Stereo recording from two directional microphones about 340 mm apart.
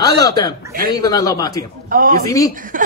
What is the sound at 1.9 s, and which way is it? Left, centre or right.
Speech, right.